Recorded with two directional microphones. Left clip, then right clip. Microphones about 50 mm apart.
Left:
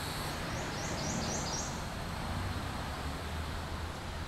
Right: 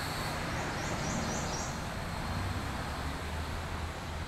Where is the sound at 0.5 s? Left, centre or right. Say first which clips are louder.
Right 2 dB; right.